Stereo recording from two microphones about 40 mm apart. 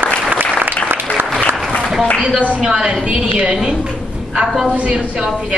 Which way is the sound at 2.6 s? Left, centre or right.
Centre.